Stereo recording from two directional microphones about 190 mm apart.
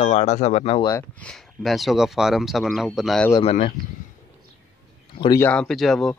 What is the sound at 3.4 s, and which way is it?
Speech, 35° left (ahead or behind).